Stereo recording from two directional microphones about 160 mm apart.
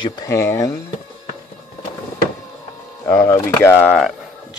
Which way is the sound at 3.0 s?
15° left (ahead or behind).